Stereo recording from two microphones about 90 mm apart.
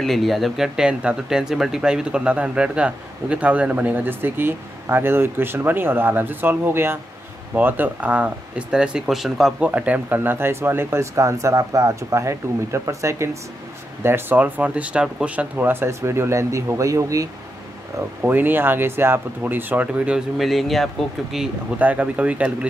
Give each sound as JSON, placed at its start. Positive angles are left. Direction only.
{"t": 0.0, "sound": "speech", "side_deg": 0}
{"t": 9.6, "sound": "speech", "side_deg": -15}
{"t": 18.2, "sound": "speech", "side_deg": -20}
{"t": 20.3, "sound": "speech", "side_deg": 0}
{"t": 21.7, "sound": "speech", "side_deg": -15}